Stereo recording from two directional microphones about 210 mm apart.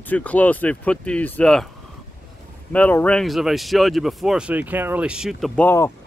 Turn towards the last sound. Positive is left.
turn(degrees=10)  # may be behind; listen again after turning